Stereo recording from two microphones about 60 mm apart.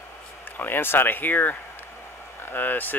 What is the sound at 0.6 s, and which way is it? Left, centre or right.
Speech, left.